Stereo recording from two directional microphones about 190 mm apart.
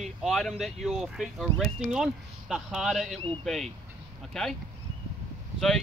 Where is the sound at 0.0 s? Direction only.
Centre (ahead or behind).